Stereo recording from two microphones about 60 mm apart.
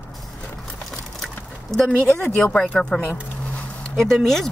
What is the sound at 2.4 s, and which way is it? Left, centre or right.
Speech, centre.